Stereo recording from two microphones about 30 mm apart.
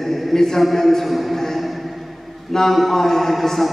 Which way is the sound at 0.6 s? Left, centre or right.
Centre.